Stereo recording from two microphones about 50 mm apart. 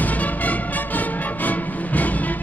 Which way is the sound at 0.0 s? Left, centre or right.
Left.